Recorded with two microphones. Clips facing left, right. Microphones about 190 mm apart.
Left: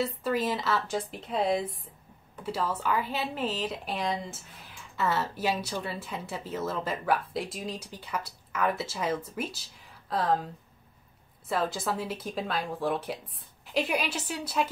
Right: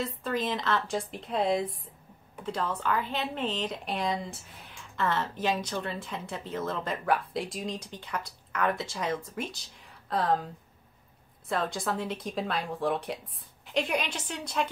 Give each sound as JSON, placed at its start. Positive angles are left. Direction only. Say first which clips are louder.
{"t": 0.0, "sound": "speech", "louder": "left 3 dB", "side_deg": 5}